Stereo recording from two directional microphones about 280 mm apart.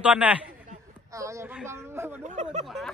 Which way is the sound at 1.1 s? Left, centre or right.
Centre.